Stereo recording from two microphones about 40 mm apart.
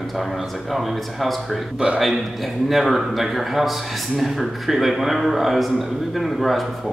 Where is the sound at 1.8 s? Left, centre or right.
Right.